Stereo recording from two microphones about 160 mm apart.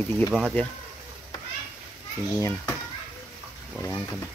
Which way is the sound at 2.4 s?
15° left (ahead or behind).